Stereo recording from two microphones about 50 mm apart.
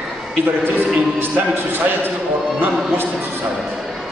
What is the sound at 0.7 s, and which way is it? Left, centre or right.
Speech, right.